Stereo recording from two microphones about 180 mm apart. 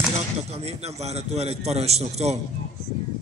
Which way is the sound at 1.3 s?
35° right (ahead or behind).